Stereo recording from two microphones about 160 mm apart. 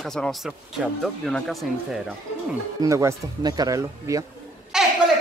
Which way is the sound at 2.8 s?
20° right (ahead or behind).